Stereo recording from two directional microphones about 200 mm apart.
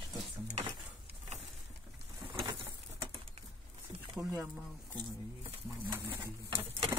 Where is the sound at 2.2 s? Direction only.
20° right (ahead or behind).